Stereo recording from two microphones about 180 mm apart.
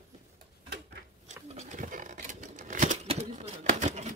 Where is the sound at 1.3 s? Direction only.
45° right (ahead or behind).